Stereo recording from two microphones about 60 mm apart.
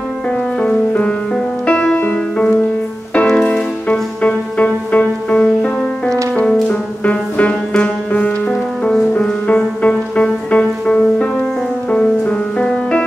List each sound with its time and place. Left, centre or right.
0.6 s music: centre
3.3 s music: centre
9.2 s music: centre